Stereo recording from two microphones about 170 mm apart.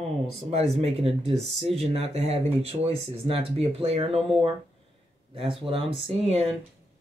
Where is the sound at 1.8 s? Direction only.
35° right (ahead or behind).